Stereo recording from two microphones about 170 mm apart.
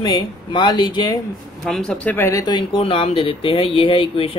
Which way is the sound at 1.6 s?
5° left (ahead or behind).